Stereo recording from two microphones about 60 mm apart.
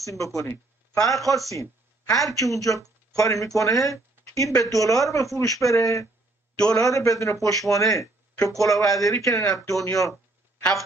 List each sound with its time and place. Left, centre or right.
0.0 s speech: left
1.5 s speech: left
6.6 s a man's voice: centre
6.9 s speech: left